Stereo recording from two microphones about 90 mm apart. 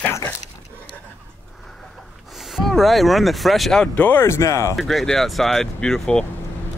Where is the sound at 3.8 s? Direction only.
20° left (ahead or behind); by 4.7 s 35° left (ahead or behind).